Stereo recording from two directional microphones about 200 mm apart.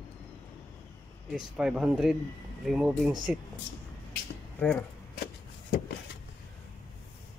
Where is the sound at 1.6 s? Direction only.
5° right (ahead or behind).